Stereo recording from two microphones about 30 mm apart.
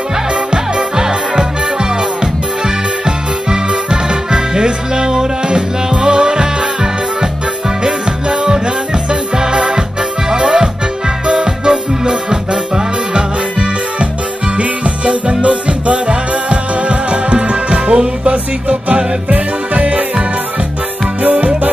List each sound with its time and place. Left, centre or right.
0.5 s music: right
9.3 s music: right
9.6 s music: right
14.6 s music: right
21.2 s music: right